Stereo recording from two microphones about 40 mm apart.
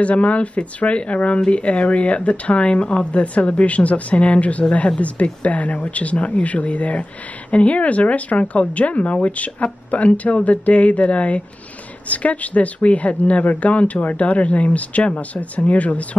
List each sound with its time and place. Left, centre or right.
0.0 s speech: left